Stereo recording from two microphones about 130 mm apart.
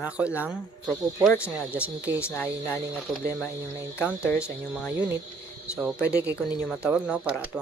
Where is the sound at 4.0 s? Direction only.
10° right (ahead or behind).